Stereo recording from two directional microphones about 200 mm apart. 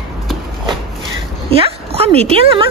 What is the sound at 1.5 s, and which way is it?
Speech, 30° right (ahead or behind).